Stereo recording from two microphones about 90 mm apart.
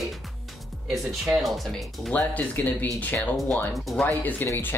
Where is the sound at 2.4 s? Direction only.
20° left (ahead or behind).